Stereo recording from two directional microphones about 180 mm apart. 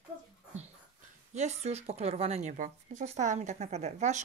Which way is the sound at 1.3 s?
40° right (ahead or behind).